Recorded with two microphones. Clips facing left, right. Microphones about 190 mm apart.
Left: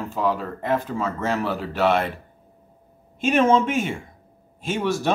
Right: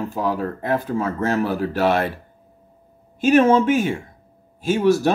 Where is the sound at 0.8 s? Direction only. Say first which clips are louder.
Right 4 dB; 45° right (ahead or behind).